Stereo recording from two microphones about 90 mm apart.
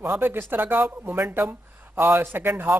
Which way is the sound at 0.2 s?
25° right (ahead or behind).